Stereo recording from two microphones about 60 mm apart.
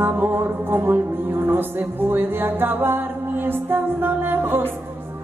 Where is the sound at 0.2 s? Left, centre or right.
Right.